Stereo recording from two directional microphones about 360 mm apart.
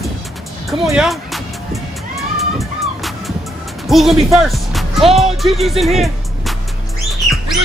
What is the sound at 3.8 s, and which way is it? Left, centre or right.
Speech, centre.